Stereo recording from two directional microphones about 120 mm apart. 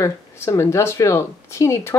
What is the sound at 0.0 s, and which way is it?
Speech, 25° left (ahead or behind).